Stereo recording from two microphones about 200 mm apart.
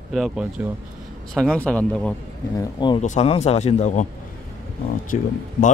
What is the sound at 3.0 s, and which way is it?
A man's voice, 35° left (ahead or behind).